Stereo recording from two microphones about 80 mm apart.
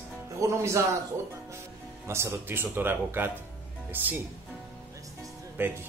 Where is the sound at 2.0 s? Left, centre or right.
Right.